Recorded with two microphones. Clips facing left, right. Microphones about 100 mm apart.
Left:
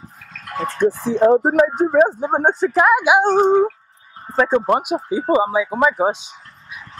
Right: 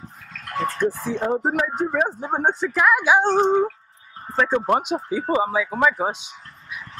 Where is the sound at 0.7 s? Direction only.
25° left (ahead or behind).